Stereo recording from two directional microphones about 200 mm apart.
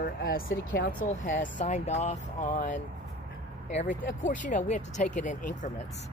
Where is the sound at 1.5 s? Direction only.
35° left (ahead or behind).